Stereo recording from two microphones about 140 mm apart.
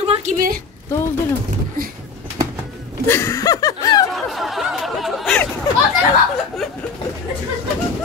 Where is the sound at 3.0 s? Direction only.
20° left (ahead or behind).